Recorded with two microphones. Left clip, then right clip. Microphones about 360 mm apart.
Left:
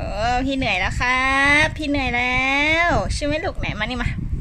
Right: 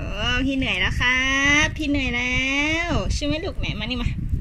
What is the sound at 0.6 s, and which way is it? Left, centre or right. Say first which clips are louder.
Speech: left 1 dB; centre.